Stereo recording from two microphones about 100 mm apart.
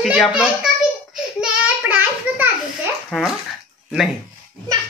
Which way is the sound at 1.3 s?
15° right (ahead or behind).